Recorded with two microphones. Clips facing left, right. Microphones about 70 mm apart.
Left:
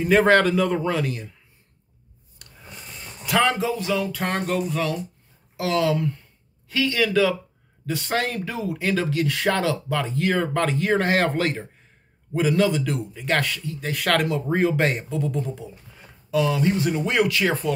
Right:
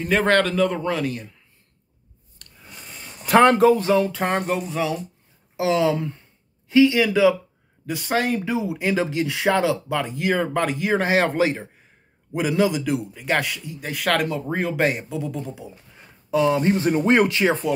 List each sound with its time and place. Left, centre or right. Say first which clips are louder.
0.0 s a man's voice: left 2 dB; centre
2.4 s a sound: left 2 dB; centre
3.3 s speech: right 7 dB; right
4.1 s a man's voice: right 2 dB; centre
16.3 s speech: right 3 dB; right